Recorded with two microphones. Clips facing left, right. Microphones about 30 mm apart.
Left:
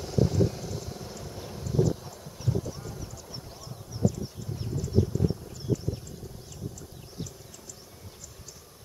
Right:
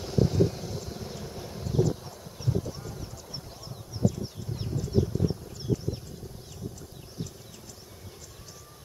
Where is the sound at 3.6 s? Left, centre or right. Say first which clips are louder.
Even; right.